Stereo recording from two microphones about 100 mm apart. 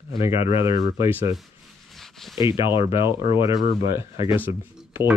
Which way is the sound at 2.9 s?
30° right (ahead or behind).